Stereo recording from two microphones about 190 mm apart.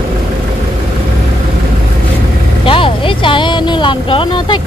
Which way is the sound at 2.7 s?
25° left (ahead or behind).